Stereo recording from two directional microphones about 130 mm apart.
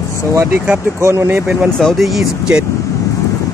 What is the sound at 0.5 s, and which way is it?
Speech, 15° right (ahead or behind).